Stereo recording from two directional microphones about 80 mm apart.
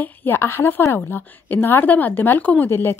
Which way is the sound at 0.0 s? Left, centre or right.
Left.